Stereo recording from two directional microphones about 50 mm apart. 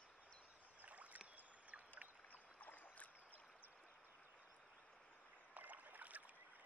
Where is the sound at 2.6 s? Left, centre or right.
Left.